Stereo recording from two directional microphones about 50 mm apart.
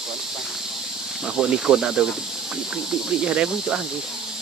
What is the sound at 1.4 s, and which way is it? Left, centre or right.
Speech, centre.